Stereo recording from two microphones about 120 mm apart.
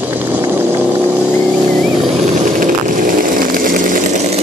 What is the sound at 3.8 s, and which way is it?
Chainsaw, 90° right.